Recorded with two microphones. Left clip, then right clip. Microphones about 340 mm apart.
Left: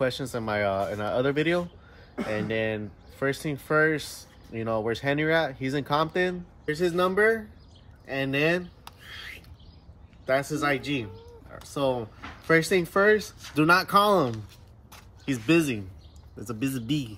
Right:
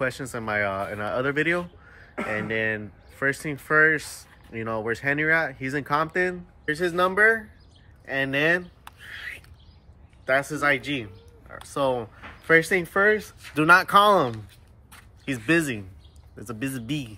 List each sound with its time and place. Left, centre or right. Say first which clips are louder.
0.0 s speech: even; centre
15.3 s speech: right 1 dB; centre
16.7 s speech: left 1 dB; right